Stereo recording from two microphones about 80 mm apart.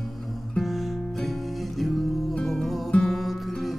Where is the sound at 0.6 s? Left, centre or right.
Centre.